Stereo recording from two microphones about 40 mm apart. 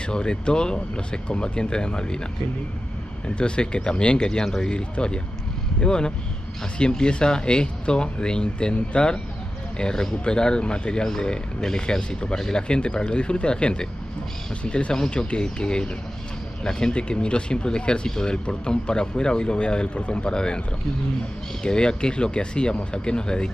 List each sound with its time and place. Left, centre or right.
0.0 s speech: left
3.3 s speech: left
21.6 s speech: left